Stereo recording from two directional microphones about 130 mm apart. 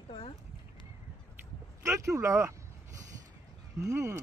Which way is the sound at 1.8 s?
25° right (ahead or behind).